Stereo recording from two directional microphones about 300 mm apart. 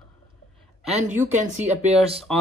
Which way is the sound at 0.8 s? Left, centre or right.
Right.